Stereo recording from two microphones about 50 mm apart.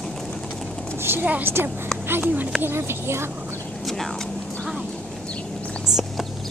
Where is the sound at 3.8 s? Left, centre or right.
Centre.